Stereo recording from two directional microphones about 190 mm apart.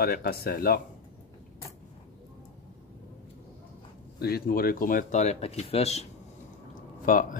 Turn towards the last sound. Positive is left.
turn(degrees=45)  # may be behind; listen again after turning